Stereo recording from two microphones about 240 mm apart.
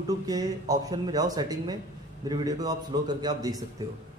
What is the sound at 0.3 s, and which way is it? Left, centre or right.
Music, centre.